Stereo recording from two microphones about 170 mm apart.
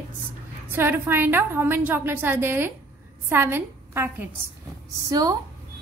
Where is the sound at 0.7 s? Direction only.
10° right (ahead or behind).